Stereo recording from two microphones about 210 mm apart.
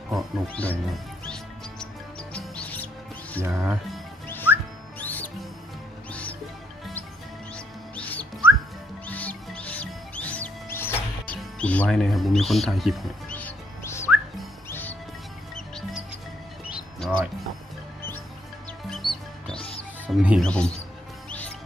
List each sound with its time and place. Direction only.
0.1 s speech: 5° left (ahead or behind)
1.2 s music: 5° left (ahead or behind)
3.4 s speech: 10° right (ahead or behind)
4.9 s music: 10° left (ahead or behind)
7.5 s music: 5° left (ahead or behind)
18.9 s music: centre (ahead or behind)
19.5 s music: 25° left (ahead or behind)
20.1 s speech: centre (ahead or behind)
21.3 s music: 5° left (ahead or behind)